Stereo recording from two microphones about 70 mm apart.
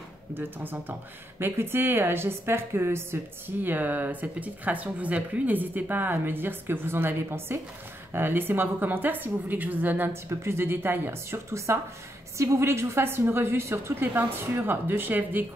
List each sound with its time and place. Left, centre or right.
0.3 s a woman's voice: right